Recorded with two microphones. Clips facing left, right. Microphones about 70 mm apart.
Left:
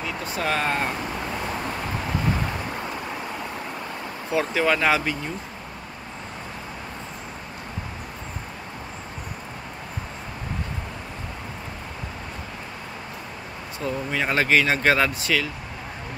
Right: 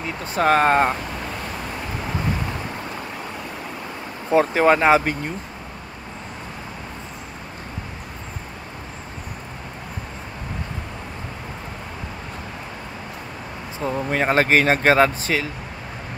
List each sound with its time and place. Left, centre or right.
0.0 s speech: right
4.3 s speech: right
13.7 s speech: right